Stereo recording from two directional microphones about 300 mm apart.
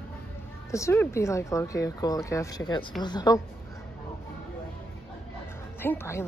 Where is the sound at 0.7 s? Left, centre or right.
Centre.